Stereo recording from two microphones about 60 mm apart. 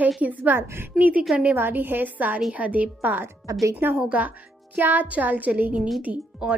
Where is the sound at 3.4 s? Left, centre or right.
Right.